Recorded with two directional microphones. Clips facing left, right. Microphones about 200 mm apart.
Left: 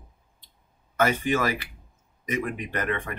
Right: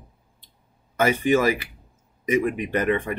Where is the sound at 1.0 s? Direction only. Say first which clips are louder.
Right 4 dB; 15° right (ahead or behind).